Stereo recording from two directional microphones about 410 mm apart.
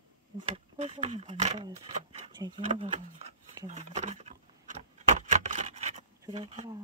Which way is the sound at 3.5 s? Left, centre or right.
Centre.